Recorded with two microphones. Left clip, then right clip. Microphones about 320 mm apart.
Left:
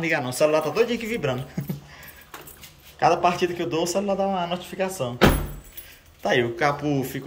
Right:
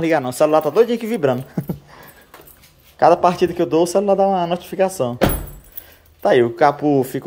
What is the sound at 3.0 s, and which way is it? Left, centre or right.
A man's voice, centre.